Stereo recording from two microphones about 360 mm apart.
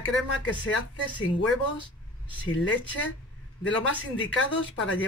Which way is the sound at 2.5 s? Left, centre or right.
Left.